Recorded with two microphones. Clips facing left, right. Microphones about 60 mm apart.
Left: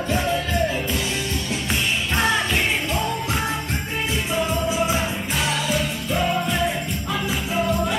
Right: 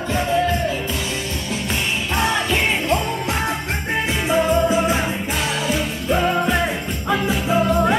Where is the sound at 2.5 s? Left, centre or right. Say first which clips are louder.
Right 3 dB; right.